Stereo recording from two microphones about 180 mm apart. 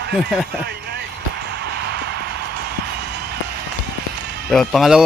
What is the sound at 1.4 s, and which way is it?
Music, 65° right (ahead or behind).